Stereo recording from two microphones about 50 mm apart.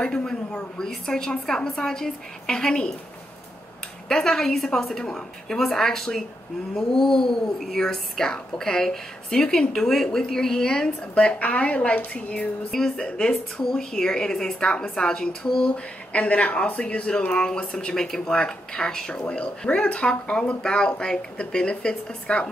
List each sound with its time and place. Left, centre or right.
0.0 s speech: centre
4.1 s speech: centre
11.1 s speech: left
12.7 s speech: centre
15.7 s speech: left